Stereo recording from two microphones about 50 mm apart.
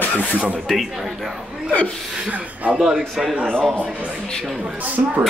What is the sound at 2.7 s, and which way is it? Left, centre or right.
Speech, centre.